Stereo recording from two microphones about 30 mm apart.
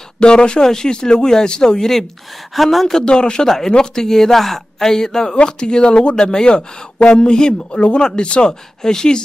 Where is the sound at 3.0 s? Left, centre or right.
Left.